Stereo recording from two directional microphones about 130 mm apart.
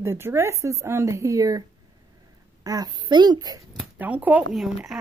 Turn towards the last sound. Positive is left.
turn(degrees=0)  # may be behind; listen again after turning